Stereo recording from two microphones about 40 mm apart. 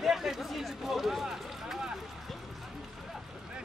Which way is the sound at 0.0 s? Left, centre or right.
Centre.